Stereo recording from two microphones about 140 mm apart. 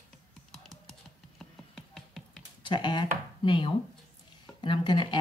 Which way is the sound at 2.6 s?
35° left (ahead or behind).